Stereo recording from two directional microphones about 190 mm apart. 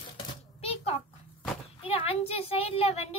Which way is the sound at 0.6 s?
30° left (ahead or behind).